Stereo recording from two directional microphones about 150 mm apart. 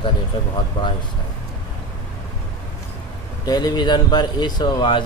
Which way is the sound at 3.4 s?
25° left (ahead or behind).